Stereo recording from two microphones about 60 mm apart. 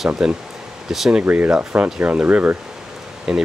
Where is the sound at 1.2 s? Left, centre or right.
Right.